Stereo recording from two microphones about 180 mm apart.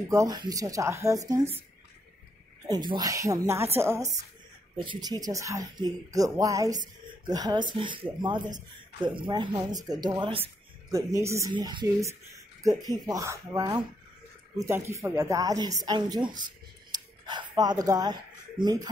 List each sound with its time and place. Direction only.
0.1 s speech: 20° right (ahead or behind)
2.7 s speech: 25° right (ahead or behind)
4.7 s speech: 25° right (ahead or behind)
10.9 s speech: 20° right (ahead or behind)